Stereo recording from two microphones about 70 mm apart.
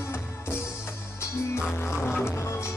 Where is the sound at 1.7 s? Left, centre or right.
Left.